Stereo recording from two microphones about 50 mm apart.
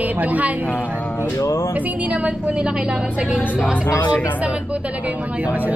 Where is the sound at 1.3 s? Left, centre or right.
Left.